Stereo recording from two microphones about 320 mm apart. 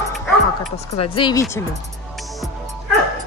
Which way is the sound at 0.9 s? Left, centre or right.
Centre.